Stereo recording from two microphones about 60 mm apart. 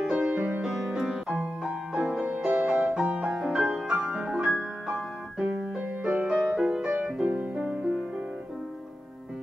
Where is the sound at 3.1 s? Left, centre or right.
Centre.